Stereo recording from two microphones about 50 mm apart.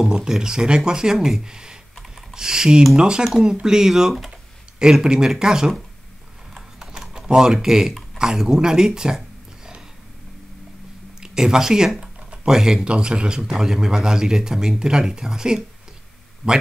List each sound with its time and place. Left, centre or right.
0.0 s speech: centre
6.8 s typing: centre
8.2 s speech: centre
11.1 s speech: centre